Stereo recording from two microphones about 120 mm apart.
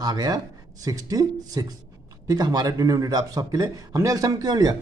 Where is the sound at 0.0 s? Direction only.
35° right (ahead or behind).